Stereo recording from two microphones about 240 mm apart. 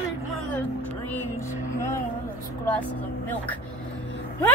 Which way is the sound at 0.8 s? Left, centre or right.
Centre.